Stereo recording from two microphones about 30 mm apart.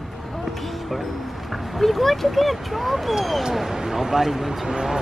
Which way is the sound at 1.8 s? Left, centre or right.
Centre.